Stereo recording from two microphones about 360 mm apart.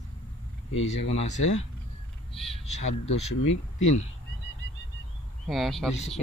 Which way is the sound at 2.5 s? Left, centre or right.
Centre.